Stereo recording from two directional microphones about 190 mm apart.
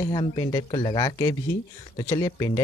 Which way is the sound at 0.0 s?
25° left (ahead or behind).